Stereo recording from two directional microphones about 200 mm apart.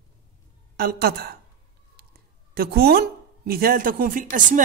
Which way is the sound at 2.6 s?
50° right (ahead or behind).